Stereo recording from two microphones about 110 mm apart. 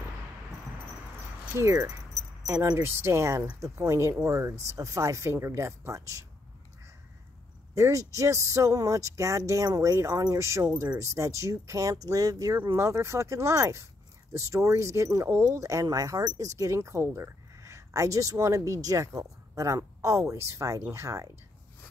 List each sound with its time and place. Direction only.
1.6 s speech: 25° right (ahead or behind)
7.7 s speech: 30° right (ahead or behind)